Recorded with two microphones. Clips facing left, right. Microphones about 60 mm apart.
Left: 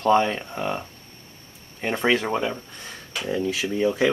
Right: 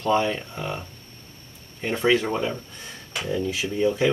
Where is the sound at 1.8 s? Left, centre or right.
Left.